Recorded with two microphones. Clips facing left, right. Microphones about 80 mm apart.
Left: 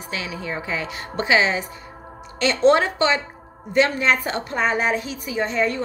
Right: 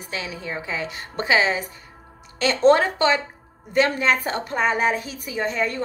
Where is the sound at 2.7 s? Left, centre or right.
Right.